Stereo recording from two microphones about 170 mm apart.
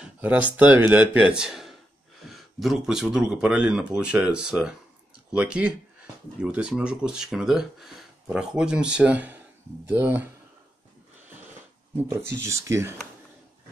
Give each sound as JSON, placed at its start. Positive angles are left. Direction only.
{"t": 0.0, "sound": "a sound", "side_deg": -10}
{"t": 0.6, "sound": "speech", "side_deg": -10}
{"t": 12.3, "sound": "speech", "side_deg": -15}